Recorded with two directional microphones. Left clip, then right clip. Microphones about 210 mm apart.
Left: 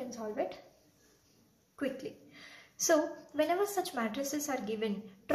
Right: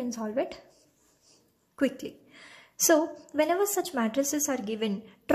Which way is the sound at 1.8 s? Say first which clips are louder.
Right 8 dB; 45° right (ahead or behind).